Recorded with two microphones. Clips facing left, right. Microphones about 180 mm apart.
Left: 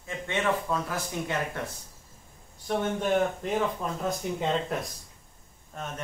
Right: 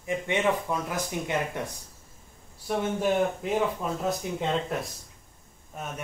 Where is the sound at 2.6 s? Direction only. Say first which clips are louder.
Right 1 dB; 5° right (ahead or behind).